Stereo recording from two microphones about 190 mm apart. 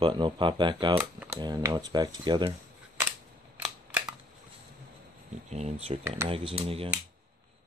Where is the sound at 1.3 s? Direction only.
20° right (ahead or behind).